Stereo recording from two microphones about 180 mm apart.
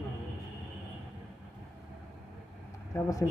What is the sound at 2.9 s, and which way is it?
Speech, 20° left (ahead or behind).